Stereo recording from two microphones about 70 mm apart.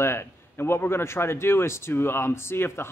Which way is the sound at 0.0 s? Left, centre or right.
Left.